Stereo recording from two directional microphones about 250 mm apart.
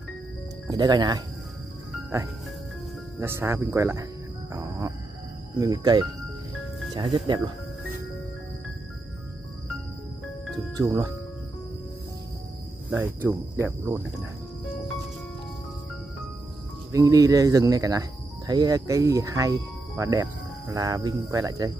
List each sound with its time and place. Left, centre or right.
0.7 s speech: centre
3.2 s speech: centre
4.6 s music: centre
5.6 s speech: centre
10.8 s speech: centre
12.9 s speech: centre
16.9 s speech: centre